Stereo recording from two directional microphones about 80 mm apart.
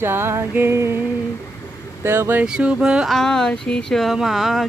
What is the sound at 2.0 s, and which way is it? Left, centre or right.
Music, right.